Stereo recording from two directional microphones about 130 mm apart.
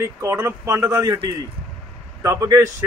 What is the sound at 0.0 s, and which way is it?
Speech, 20° right (ahead or behind).